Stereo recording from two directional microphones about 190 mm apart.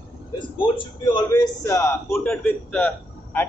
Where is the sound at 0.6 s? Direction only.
25° left (ahead or behind).